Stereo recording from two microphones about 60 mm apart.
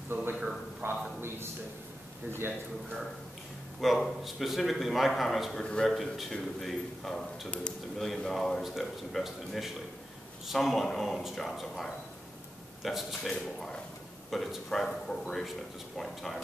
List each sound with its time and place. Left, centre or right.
0.1 s a sound: right
3.8 s a man's voice: centre
5.6 s speech: centre
5.9 s a man's voice: centre